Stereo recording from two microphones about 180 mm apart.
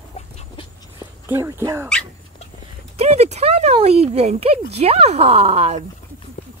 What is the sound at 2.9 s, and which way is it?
Speech, 35° right (ahead or behind).